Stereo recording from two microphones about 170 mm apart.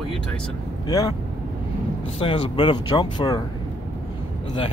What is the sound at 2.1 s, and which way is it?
Speech, 30° left (ahead or behind).